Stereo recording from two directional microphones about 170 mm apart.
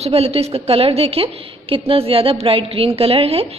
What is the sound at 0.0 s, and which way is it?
A woman's voice, 35° right (ahead or behind).